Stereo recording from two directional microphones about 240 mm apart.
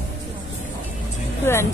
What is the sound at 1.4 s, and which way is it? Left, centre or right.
Speech, centre.